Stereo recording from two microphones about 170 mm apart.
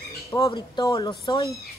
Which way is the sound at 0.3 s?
25° left (ahead or behind).